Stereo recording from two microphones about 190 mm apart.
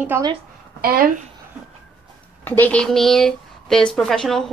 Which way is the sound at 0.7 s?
50° right (ahead or behind).